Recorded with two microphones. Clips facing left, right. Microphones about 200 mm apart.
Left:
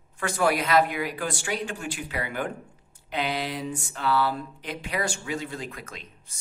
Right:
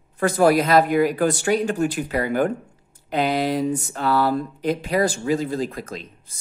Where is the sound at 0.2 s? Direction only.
35° right (ahead or behind).